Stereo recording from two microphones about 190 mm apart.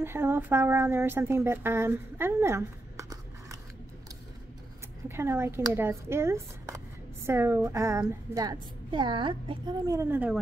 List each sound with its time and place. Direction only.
0.0 s a woman's voice: 10° right (ahead or behind)
5.0 s a woman's voice: 10° right (ahead or behind)